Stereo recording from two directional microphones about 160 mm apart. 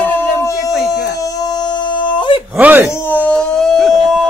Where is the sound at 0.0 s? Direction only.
15° left (ahead or behind); by 2.4 s 30° left (ahead or behind).